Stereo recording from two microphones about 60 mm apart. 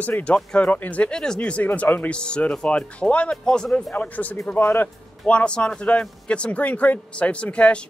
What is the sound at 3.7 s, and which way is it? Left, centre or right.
Speech, left.